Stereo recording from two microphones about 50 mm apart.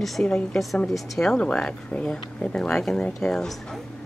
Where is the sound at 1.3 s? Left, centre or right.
Left.